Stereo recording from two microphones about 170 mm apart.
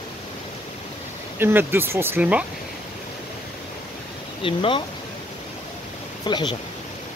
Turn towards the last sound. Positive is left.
turn(degrees=25)  # may be behind; listen again after turning